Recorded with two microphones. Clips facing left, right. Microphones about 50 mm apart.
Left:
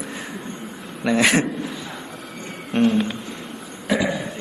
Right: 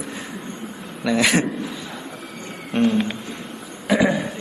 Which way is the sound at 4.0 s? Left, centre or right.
Right.